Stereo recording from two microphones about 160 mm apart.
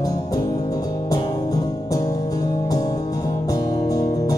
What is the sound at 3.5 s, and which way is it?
Music, 25° left (ahead or behind).